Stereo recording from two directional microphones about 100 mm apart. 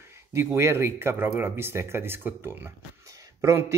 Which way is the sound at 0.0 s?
25° right (ahead or behind).